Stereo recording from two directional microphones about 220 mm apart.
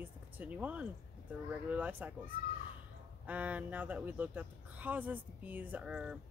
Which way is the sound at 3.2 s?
5° right (ahead or behind).